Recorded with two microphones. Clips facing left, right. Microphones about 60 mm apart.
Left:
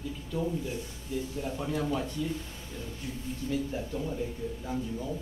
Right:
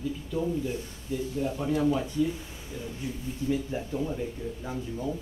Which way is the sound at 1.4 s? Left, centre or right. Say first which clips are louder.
Right 7 dB; centre.